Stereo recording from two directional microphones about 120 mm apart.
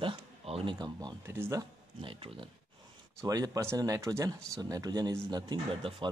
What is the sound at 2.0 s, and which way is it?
Speech, 45° right (ahead or behind).